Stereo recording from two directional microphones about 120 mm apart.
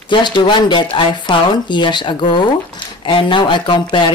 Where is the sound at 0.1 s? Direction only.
40° left (ahead or behind).